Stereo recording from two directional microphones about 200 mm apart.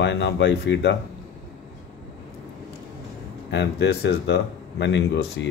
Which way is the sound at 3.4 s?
60° left (ahead or behind).